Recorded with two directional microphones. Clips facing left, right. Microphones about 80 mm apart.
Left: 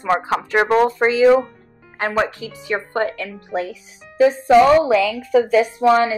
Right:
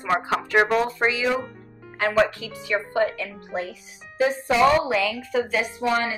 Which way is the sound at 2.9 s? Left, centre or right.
Left.